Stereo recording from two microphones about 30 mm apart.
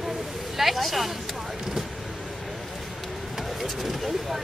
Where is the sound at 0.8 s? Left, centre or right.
Centre.